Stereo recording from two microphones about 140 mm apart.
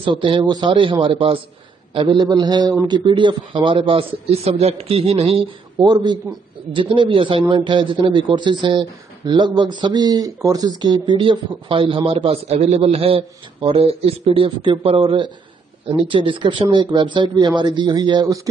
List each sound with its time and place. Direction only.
0.0 s a man's voice: 35° right (ahead or behind)
5.8 s a man's voice: 30° right (ahead or behind)